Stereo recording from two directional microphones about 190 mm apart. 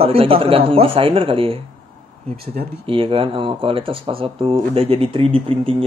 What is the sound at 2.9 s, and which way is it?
Speech, 30° right (ahead or behind).